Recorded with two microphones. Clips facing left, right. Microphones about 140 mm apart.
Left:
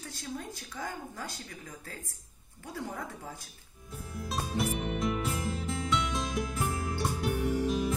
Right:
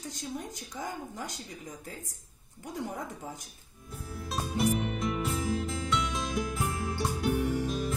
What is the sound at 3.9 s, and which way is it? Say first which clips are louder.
Music: even; centre (ahead or behind).